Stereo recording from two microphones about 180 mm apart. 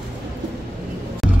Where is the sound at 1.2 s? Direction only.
Centre (ahead or behind).